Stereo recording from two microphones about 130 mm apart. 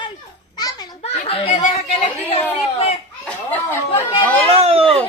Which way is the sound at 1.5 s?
65° left (ahead or behind).